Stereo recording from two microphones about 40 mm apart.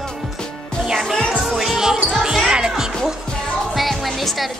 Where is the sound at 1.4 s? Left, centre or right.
Centre.